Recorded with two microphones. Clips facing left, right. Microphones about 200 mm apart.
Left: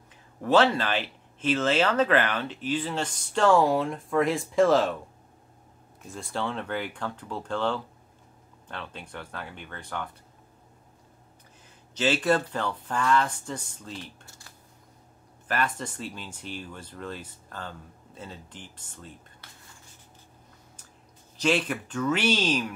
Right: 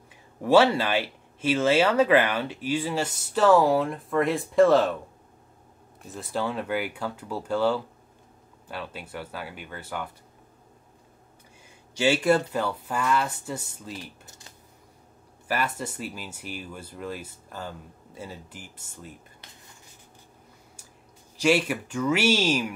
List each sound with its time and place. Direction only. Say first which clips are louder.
0.4 s speech: right 3 dB; 10° right (ahead or behind)
6.0 s speech: right 2 dB; 5° right (ahead or behind)
11.9 s speech: right 3 dB; 10° right (ahead or behind)
15.4 s speech: right 1 dB; 10° right (ahead or behind)
19.4 s a sound: right 1 dB; 15° right (ahead or behind)
21.4 s speech: right 3 dB; 10° right (ahead or behind)